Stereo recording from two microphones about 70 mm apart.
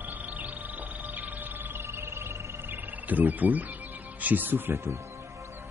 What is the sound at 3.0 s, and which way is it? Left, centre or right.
Speech, right.